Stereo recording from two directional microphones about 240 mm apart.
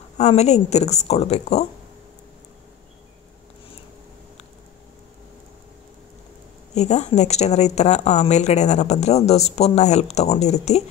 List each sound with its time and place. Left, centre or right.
0.2 s a woman's voice: left
6.7 s a woman's voice: left